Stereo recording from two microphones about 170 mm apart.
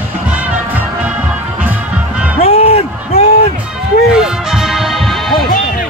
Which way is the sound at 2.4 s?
35° left (ahead or behind).